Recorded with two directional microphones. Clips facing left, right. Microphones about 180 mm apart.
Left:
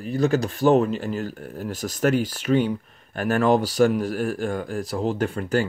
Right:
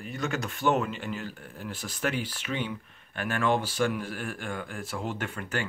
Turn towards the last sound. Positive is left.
turn(degrees=35)  # may be behind; listen again after turning